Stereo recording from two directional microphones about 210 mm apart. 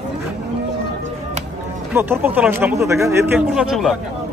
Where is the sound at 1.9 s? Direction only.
10° right (ahead or behind).